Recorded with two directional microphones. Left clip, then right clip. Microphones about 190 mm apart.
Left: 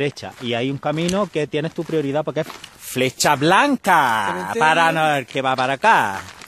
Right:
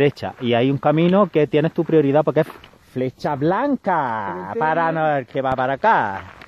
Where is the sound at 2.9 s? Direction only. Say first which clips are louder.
Left 6 dB; 5° left (ahead or behind).